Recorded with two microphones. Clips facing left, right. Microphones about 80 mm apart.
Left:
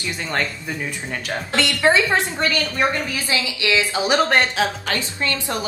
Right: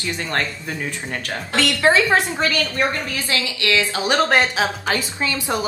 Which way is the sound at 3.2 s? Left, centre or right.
Centre.